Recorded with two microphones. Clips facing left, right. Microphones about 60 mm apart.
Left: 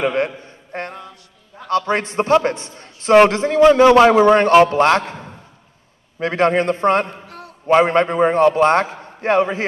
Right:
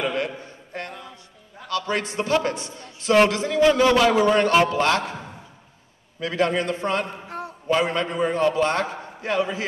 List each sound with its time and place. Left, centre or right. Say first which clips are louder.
0.0 s a man's voice: left 6 dB; left
0.7 s music: left 6 dB; left
1.7 s a man's voice: left 7 dB; left
7.2 s a sound: right 4 dB; right
7.6 s a man's voice: left 9 dB; left